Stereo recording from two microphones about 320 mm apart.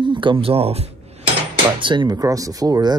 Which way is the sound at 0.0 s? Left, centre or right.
Centre.